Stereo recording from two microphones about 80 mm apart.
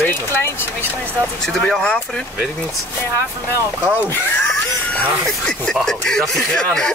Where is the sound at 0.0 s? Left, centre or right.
Left.